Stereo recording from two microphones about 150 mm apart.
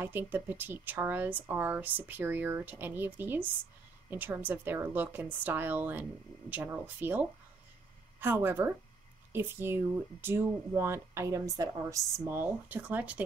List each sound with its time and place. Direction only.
0.0 s speech: 15° right (ahead or behind)